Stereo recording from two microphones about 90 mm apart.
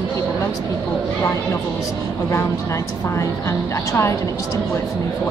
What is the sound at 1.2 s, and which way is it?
Speech, 35° left (ahead or behind).